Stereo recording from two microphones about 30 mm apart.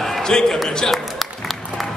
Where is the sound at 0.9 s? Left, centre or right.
Centre.